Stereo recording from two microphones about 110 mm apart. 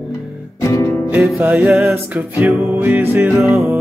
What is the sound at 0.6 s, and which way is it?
Music, 30° left (ahead or behind).